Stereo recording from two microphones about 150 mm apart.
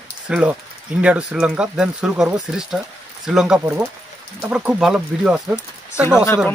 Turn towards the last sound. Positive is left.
turn(degrees=15)  # may be behind; listen again after turning